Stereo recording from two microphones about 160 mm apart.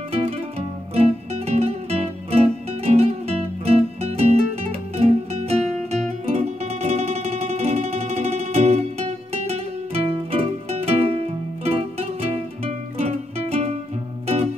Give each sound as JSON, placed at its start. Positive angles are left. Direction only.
{"t": 0.1, "sound": "music", "side_deg": -40}